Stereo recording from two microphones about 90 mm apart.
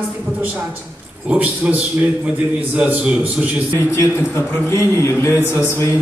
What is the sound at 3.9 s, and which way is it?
A man's voice, 30° left (ahead or behind).